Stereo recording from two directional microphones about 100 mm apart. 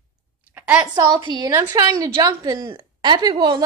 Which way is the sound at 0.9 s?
45° right (ahead or behind).